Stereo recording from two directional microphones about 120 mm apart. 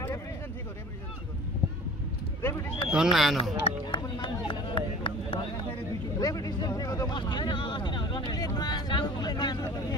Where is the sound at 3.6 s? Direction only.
45° left (ahead or behind).